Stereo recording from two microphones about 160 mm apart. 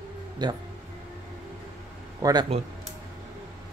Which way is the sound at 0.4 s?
25° right (ahead or behind).